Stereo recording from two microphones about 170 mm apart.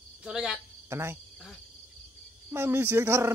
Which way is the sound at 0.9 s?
15° right (ahead or behind).